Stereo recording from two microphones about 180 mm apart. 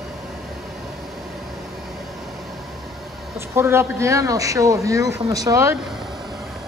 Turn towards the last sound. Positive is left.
turn(degrees=-15)  # may be behind; listen again after turning